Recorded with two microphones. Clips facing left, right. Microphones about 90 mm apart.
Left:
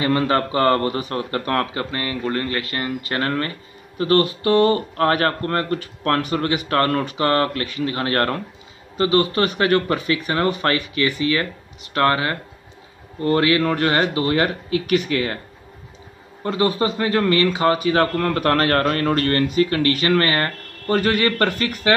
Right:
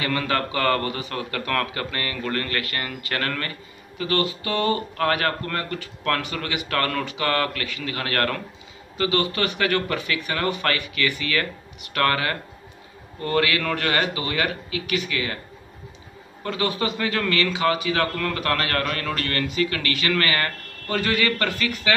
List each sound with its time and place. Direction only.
0.0 s a man's voice: 30° left (ahead or behind)
4.0 s a man's voice: 40° left (ahead or behind)
16.4 s a man's voice: 35° left (ahead or behind)